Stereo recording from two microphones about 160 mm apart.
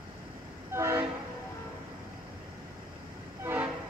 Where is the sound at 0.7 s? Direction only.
15° right (ahead or behind).